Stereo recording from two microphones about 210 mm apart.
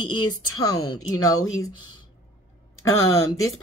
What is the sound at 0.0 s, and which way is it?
A woman's voice, 20° left (ahead or behind).